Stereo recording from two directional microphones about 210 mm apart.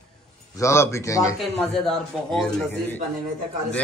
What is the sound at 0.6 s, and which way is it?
Speech, 10° left (ahead or behind).